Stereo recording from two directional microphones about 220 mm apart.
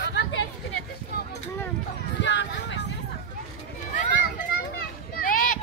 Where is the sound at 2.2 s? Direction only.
55° left (ahead or behind).